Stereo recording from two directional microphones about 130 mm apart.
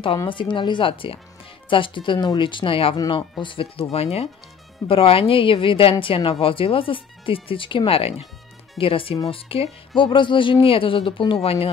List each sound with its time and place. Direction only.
0.3 s a woman's voice: 40° left (ahead or behind)